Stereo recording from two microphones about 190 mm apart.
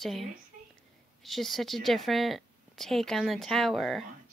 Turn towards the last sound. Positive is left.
turn(degrees=0)  # may be behind; listen again after turning